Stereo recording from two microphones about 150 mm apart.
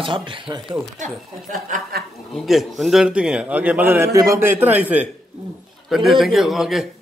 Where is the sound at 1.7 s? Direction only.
90° right.